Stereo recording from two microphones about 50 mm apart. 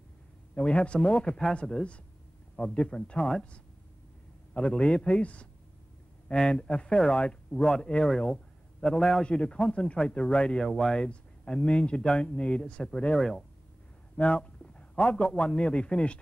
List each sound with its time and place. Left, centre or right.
0.6 s speech: left
8.9 s speech: centre
10.7 s speech: centre
11.0 s a man's voice: centre